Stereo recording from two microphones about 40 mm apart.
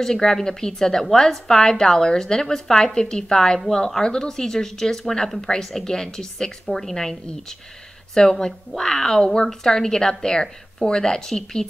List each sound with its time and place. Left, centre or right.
0.0 s a woman's voice: centre